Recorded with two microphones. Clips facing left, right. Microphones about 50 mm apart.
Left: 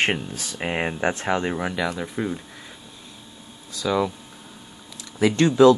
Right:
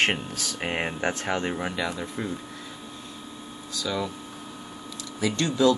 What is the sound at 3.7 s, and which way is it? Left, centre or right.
Speech, left.